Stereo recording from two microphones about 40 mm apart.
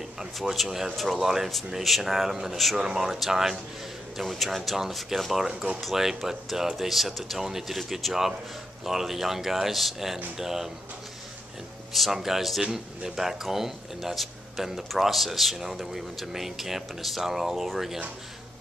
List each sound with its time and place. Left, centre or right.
0.7 s speech: centre
0.9 s speech: centre
1.2 s speech: centre
2.8 s speech: centre
4.2 s speech: centre
12.1 s speech: centre